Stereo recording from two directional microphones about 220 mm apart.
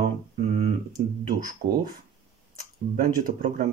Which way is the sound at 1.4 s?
40° right (ahead or behind).